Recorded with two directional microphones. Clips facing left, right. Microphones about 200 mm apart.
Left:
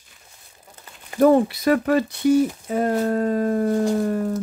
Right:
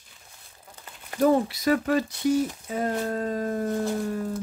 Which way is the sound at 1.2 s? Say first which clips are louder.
Left 6 dB; 60° left (ahead or behind).